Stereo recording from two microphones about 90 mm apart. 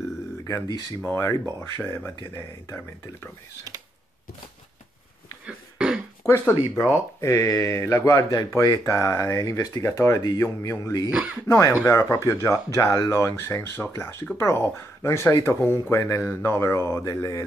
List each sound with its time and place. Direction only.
1.1 s speech: 25° left (ahead or behind)
5.5 s a sound: 10° right (ahead or behind)
6.2 s speech: 25° left (ahead or behind)
7.2 s speech: 35° left (ahead or behind)
8.8 s speech: 35° left (ahead or behind)
11.1 s speech: 10° right (ahead or behind)
11.4 s speech: 35° left (ahead or behind)
16.0 s speech: 40° left (ahead or behind)
16.3 s speech: 25° left (ahead or behind)